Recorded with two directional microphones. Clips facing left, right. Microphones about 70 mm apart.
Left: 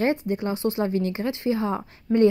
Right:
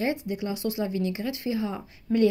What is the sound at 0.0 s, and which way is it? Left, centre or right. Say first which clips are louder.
Speech: left 5 dB; left.